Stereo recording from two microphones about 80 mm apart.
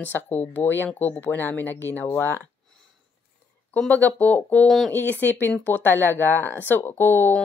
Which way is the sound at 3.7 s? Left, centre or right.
Centre.